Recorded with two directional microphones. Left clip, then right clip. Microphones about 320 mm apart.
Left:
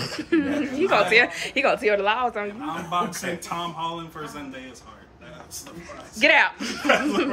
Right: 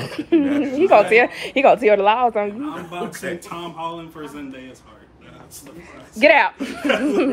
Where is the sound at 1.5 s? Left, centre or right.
Centre.